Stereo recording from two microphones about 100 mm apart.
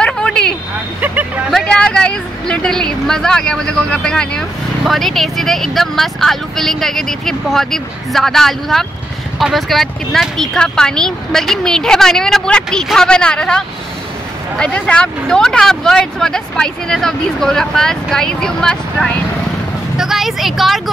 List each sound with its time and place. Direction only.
0.0 s vehicle: 10° left (ahead or behind)
1.0 s vehicle: 15° right (ahead or behind)
1.5 s speech: 10° left (ahead or behind)